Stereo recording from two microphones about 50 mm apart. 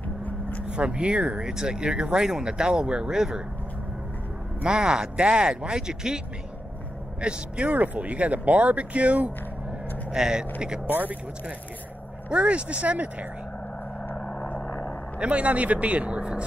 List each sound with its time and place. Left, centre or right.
0.2 s vehicle: left
0.7 s speech: right
4.6 s speech: centre
10.1 s speech: centre
12.3 s speech: right
14.1 s vehicle: centre
15.1 s speech: right